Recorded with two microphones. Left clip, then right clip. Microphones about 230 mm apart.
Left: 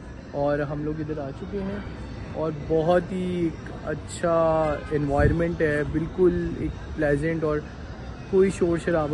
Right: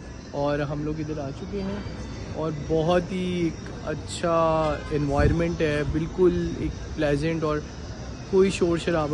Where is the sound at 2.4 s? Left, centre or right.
Centre.